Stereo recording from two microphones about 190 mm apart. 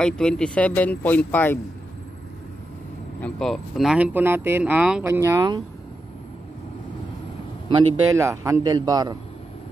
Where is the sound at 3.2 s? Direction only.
Centre (ahead or behind); by 5.6 s 20° right (ahead or behind).